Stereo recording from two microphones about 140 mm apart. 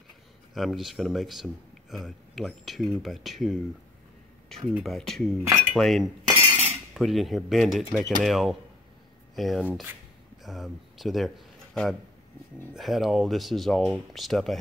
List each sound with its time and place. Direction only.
0.6 s speech: centre (ahead or behind)
6.5 s cutlery: 50° right (ahead or behind)
6.9 s speech: centre (ahead or behind)